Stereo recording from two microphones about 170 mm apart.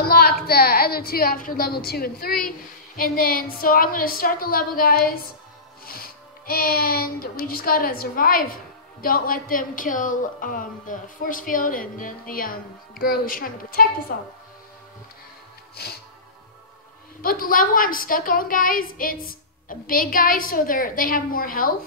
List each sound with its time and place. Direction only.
0.5 s a woman's voice: 65° left (ahead or behind)
15.7 s music: 65° left (ahead or behind)
17.2 s a woman's voice: 55° left (ahead or behind)